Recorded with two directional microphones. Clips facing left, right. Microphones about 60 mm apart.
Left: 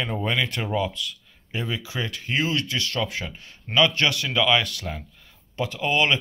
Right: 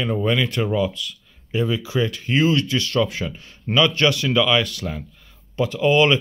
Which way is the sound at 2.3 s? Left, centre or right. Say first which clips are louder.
Right 6 dB; centre.